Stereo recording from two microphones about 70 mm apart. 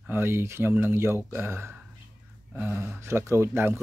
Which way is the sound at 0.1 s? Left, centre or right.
Right.